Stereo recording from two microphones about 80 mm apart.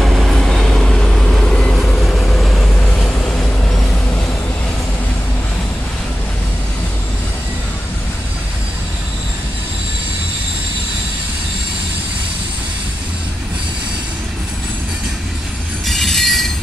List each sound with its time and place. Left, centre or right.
0.0 s vehicle: centre
3.3 s train: centre
15.9 s train: centre